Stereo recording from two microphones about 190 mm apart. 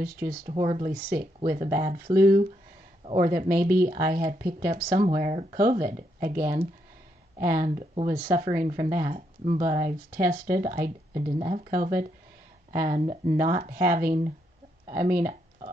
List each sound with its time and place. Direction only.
0.0 s speech: 50° right (ahead or behind)
0.6 s speech: 30° right (ahead or behind)
0.8 s speech: 50° right (ahead or behind)
5.3 s speech: 35° right (ahead or behind)
5.6 s speech: 50° right (ahead or behind)
13.0 s speech: 30° right (ahead or behind)
13.4 s speech: 45° right (ahead or behind)